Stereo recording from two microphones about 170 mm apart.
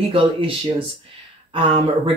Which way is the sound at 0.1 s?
30° right (ahead or behind).